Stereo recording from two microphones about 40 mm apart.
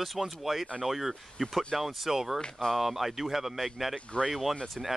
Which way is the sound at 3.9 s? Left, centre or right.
Left.